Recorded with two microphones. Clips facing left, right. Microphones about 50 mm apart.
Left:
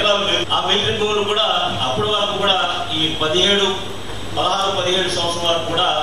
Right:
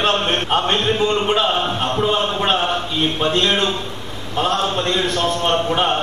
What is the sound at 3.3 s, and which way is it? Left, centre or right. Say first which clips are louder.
A man's voice: left 1 dB; right.